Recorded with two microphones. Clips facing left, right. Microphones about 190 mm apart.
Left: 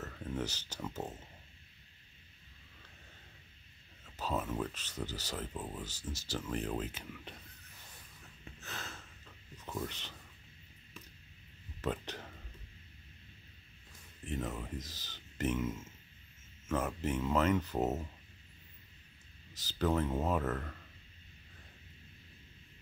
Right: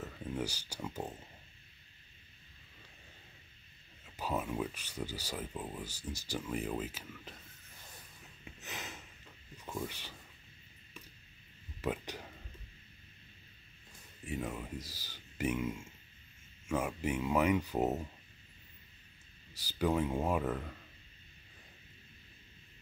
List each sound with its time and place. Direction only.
0.0 s speech: 10° right (ahead or behind)
4.0 s speech: 10° right (ahead or behind)
8.5 s a sound: 15° right (ahead or behind)
9.7 s speech: 10° right (ahead or behind)
11.8 s speech: 10° right (ahead or behind)
14.2 s speech: 10° right (ahead or behind)
19.5 s speech: 10° right (ahead or behind)